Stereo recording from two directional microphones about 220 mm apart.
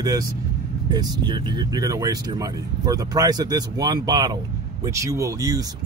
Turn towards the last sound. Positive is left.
turn(degrees=-15)  # may be behind; listen again after turning